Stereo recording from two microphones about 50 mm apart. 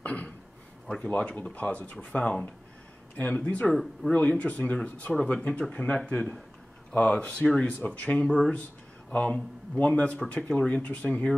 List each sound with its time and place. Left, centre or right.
0.0 s a sound: left
0.8 s speech: centre
8.3 s speech: centre
9.1 s speech: left